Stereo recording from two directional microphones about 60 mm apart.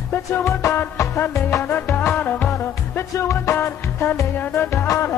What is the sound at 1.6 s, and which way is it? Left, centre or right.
Music, left.